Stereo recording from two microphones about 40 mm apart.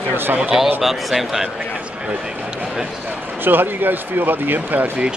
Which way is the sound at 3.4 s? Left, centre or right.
Right.